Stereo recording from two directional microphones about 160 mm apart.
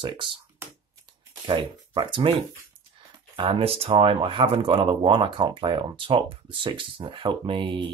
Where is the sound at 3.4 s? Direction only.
35° right (ahead or behind).